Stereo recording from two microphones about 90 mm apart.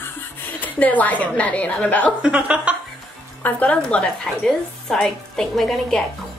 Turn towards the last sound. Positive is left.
turn(degrees=5)  # may be behind; listen again after turning